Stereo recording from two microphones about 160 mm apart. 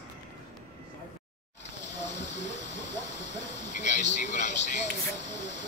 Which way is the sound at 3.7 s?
50° left (ahead or behind).